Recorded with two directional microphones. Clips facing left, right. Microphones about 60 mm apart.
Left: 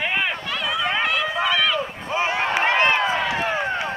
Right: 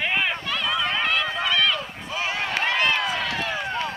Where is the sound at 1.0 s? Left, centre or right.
Centre.